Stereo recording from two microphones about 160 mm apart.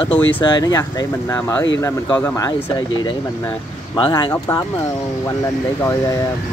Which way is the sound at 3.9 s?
25° left (ahead or behind).